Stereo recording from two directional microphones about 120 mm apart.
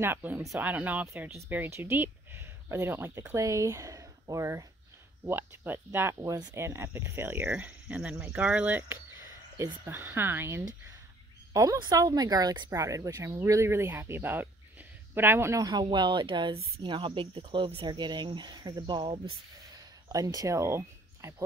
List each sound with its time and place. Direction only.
0.0 s speech: 15° right (ahead or behind); by 19.3 s 45° right (ahead or behind)
19.8 s speech: 30° right (ahead or behind)